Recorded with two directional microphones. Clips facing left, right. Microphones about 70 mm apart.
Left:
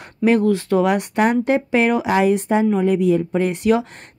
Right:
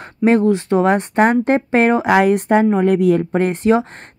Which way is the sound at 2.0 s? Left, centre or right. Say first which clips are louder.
Right 3 dB; right.